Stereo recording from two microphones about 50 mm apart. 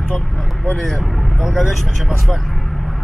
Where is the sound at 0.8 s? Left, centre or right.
Centre.